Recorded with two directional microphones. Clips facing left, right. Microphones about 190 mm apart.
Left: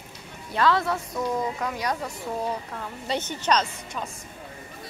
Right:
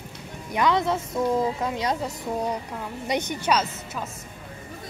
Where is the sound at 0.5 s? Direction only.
20° right (ahead or behind).